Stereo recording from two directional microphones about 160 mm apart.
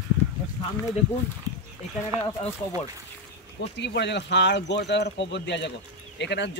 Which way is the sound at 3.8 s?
90° left.